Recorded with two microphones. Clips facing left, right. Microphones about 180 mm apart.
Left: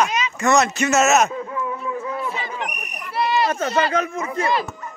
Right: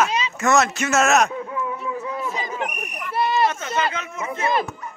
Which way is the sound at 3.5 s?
50° left (ahead or behind).